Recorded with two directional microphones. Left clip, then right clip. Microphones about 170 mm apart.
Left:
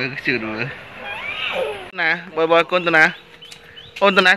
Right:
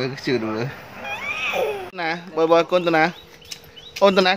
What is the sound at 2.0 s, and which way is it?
Speech, 10° right (ahead or behind).